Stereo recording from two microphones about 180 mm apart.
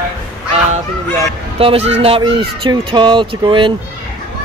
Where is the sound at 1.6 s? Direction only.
35° right (ahead or behind).